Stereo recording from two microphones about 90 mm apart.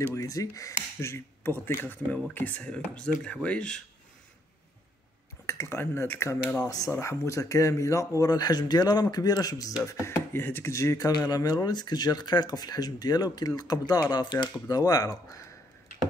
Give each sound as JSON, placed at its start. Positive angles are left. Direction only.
{"t": 0.0, "sound": "speech", "side_deg": 35}
{"t": 5.5, "sound": "speech", "side_deg": 30}
{"t": 6.6, "sound": "speech", "side_deg": 40}
{"t": 11.1, "sound": "speech", "side_deg": 50}